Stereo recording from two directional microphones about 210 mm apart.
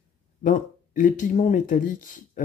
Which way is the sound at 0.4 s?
40° left (ahead or behind).